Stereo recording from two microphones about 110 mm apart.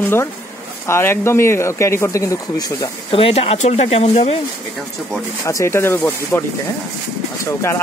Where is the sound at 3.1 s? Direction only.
60° left (ahead or behind).